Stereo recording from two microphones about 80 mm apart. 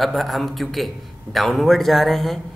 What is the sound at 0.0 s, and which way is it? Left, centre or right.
Speech, centre.